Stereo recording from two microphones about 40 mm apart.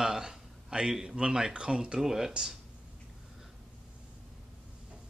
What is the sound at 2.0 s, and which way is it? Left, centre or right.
Speech, centre.